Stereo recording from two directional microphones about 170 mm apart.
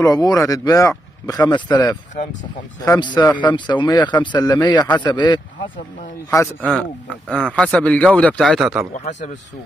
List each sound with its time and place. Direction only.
0.0 s a man's voice: 20° left (ahead or behind)
6.6 s speech: centre (ahead or behind)
8.9 s a man's voice: 45° left (ahead or behind)